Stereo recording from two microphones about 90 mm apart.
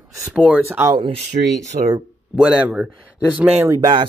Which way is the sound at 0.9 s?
90° right.